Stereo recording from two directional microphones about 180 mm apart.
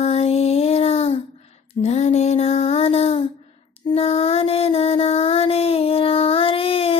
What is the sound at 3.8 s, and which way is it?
Child singing, 35° left (ahead or behind).